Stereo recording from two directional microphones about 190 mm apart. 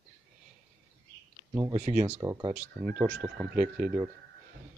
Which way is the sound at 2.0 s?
15° right (ahead or behind).